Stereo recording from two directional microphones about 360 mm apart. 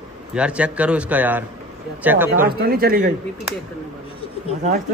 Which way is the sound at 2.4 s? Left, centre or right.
Right.